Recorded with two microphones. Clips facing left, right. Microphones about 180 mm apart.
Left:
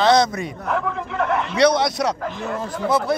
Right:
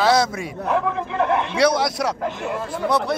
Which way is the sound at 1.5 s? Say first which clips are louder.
Left 2 dB; 5° right (ahead or behind).